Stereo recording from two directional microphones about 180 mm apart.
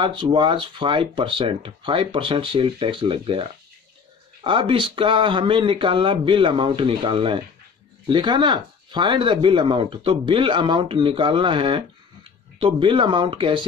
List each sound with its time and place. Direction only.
0.0 s speech: 30° right (ahead or behind)